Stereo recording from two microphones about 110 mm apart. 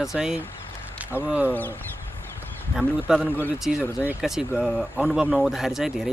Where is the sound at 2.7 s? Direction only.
5° left (ahead or behind).